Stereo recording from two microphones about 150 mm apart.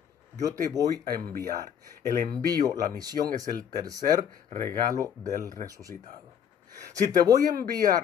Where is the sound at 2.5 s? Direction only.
25° right (ahead or behind).